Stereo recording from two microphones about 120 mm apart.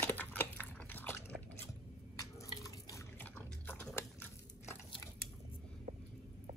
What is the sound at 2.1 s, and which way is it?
Drip, 30° left (ahead or behind).